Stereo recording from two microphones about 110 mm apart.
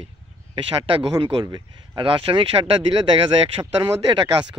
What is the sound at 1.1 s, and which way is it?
Speech, 35° right (ahead or behind).